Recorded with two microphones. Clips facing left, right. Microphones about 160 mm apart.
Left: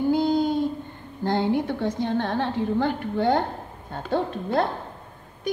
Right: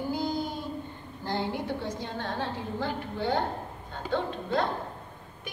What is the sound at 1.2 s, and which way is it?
A woman's voice, 55° left (ahead or behind).